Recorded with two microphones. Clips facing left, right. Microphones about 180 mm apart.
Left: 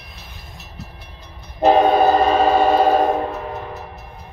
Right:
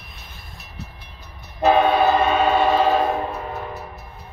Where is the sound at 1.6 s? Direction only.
40° left (ahead or behind).